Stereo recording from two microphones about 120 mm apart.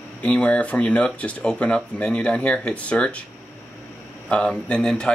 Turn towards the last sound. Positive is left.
turn(degrees=5)  # may be behind; listen again after turning